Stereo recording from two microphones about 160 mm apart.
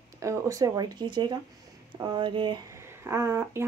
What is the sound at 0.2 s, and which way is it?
Speech, 20° right (ahead or behind).